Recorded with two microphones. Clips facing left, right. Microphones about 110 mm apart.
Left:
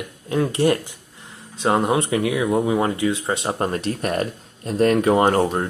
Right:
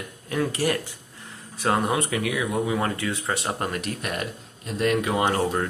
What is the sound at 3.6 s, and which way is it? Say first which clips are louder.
Speech: left 6 dB; 35° left (ahead or behind).